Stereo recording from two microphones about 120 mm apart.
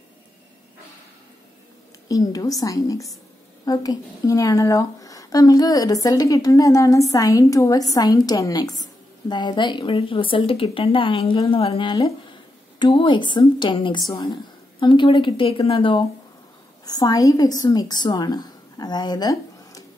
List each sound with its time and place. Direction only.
2.0 s a woman's voice: 30° left (ahead or behind); by 16.0 s 50° left (ahead or behind)
16.8 s a woman's voice: 35° left (ahead or behind)